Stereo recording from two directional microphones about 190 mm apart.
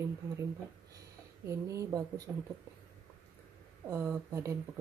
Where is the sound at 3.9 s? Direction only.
15° right (ahead or behind).